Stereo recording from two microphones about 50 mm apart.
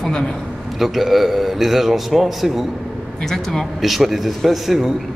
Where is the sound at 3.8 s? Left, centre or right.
Centre.